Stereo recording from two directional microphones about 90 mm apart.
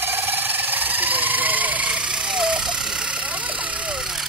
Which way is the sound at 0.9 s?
20° right (ahead or behind).